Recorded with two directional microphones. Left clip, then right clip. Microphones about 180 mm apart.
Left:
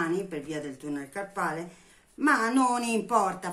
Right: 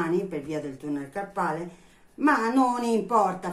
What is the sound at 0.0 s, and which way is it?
Speech, 25° left (ahead or behind).